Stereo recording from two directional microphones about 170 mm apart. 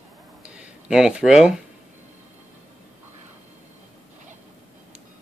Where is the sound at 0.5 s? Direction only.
5° right (ahead or behind).